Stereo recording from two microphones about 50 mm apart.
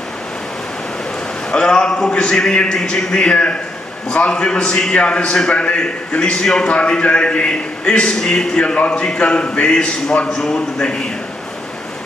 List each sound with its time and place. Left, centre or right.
1.5 s a man's voice: centre
3.2 s a man's voice: left